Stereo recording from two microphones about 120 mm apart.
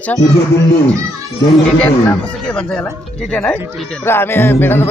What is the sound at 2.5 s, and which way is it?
Speech, 10° left (ahead or behind).